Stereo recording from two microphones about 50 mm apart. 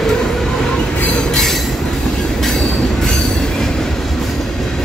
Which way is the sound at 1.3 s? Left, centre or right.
Centre.